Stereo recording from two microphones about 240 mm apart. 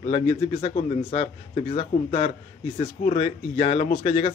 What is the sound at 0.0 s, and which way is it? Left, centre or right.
A man's voice, left.